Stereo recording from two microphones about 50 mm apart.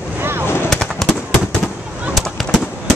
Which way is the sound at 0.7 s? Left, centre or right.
Centre.